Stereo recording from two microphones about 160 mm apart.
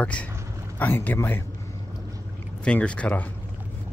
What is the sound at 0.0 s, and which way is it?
Speech, 5° left (ahead or behind).